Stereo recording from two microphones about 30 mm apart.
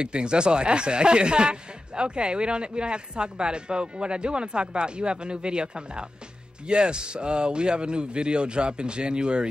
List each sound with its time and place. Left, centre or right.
0.0 s speech: right